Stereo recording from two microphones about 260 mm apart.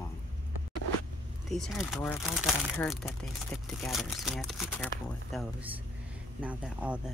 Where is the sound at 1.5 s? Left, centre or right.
Centre.